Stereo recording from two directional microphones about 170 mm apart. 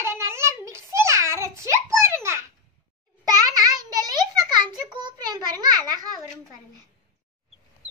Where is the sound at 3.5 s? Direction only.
20° right (ahead or behind).